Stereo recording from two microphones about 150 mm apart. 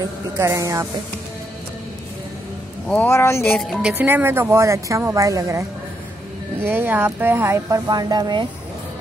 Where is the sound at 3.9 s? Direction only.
15° right (ahead or behind).